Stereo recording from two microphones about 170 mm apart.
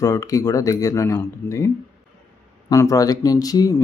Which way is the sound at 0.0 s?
20° left (ahead or behind).